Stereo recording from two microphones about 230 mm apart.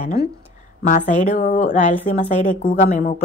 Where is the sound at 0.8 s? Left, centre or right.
Left.